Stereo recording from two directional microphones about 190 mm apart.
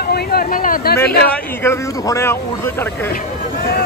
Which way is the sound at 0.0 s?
55° left (ahead or behind).